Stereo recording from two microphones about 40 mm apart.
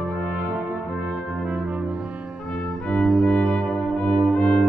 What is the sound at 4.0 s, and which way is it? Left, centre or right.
Brass instrument, left.